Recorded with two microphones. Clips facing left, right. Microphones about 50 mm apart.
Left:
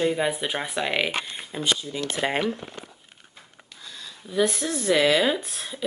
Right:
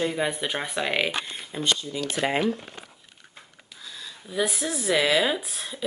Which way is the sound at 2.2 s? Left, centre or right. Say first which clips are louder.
Right 1 dB; left.